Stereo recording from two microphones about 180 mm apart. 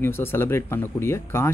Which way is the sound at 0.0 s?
15° left (ahead or behind).